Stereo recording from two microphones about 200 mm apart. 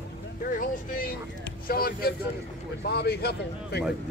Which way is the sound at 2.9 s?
55° left (ahead or behind).